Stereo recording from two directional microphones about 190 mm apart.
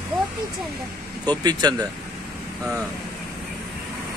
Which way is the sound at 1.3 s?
20° right (ahead or behind).